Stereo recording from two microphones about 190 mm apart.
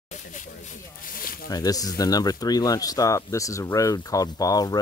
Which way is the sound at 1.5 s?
20° left (ahead or behind).